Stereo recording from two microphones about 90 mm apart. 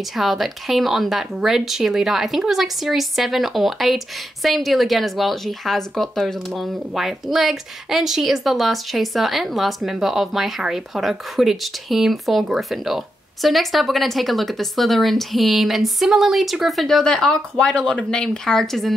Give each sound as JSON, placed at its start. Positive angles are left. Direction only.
{"t": 0.0, "sound": "speech", "side_deg": 0}